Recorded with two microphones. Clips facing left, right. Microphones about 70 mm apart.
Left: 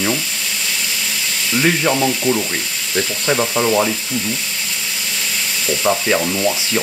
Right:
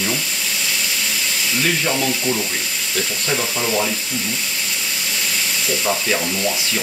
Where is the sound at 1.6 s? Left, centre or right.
Centre.